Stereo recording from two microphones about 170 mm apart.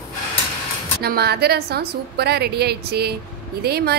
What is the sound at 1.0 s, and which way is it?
A woman's voice, 70° right (ahead or behind).